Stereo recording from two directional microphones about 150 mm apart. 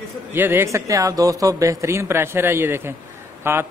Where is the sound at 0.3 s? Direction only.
15° right (ahead or behind).